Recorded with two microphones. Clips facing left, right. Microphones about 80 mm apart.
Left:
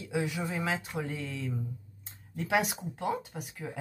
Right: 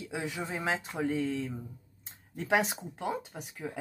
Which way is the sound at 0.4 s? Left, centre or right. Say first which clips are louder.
Even; centre.